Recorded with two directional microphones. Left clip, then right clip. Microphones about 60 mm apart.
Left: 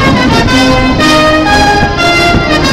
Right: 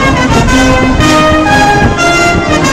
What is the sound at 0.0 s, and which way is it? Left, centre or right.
Music, left.